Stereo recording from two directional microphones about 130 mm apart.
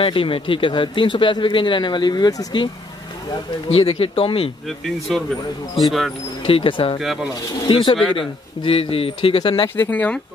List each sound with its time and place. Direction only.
0.0 s speech: 45° left (ahead or behind)
3.6 s speech: 50° left (ahead or behind)
4.6 s speech: centre (ahead or behind)
6.4 s speech: 45° left (ahead or behind)
7.0 s speech: 5° right (ahead or behind)
7.6 s speech: 40° left (ahead or behind)
9.8 s speech: 10° left (ahead or behind)